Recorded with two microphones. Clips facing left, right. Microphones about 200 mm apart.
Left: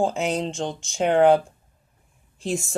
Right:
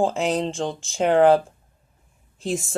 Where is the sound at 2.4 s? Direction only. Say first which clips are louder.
Right 1 dB; centre (ahead or behind).